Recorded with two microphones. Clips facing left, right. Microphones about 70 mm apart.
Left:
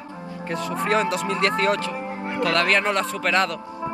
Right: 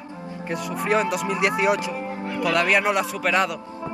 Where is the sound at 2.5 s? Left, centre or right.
Centre.